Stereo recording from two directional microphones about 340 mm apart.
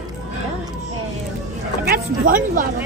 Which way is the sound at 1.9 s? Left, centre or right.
Right.